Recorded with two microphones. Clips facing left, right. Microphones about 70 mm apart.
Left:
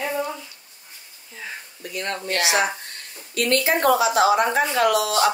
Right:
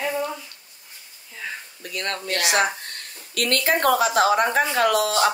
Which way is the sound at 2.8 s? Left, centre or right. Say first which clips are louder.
Right 1 dB; right.